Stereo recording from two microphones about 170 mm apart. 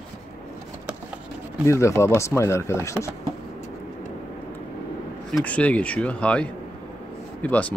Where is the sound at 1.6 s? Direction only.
15° left (ahead or behind).